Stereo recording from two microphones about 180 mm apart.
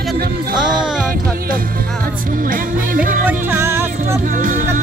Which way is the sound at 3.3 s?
10° right (ahead or behind).